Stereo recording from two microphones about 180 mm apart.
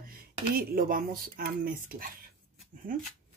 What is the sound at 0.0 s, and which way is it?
Speech, 55° right (ahead or behind).